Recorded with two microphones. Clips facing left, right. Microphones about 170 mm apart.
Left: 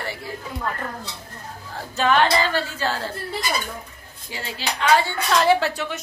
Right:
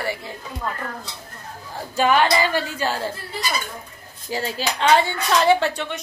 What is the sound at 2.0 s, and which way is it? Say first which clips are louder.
Speech: right 1 dB; 10° right (ahead or behind).